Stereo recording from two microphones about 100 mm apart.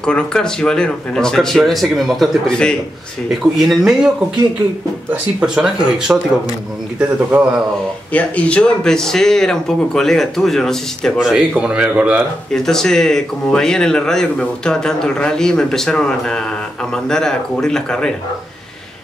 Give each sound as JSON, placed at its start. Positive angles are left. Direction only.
{"t": 0.0, "sound": "speech", "side_deg": 10}
{"t": 3.3, "sound": "speech", "side_deg": -5}
{"t": 5.1, "sound": "speech", "side_deg": -10}
{"t": 8.1, "sound": "speech", "side_deg": 15}
{"t": 11.1, "sound": "speech", "side_deg": -10}
{"t": 12.5, "sound": "speech", "side_deg": 5}